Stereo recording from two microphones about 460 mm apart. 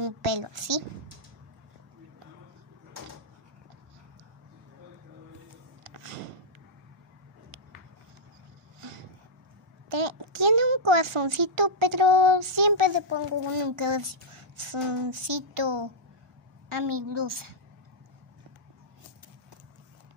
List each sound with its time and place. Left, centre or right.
0.0 s a woman's voice: right
5.9 s a sound: right
9.8 s a child's voice: right
13.1 s speech: right
16.6 s a woman's voice: right